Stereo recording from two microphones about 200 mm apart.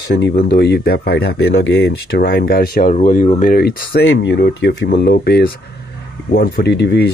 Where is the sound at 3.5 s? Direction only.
50° left (ahead or behind).